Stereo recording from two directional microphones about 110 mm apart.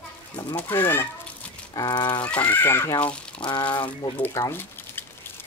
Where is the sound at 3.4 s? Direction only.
45° left (ahead or behind).